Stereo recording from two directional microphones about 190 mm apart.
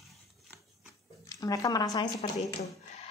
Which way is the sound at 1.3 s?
15° left (ahead or behind).